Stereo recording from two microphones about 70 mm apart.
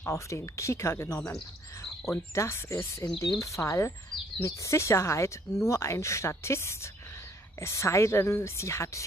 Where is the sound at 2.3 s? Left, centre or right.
Left.